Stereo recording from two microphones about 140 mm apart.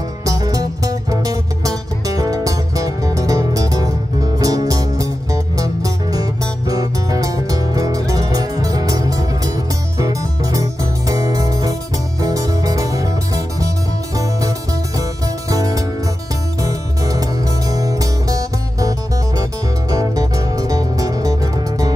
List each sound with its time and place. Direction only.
0.2 s music: 25° right (ahead or behind)
15.5 s music: 25° right (ahead or behind)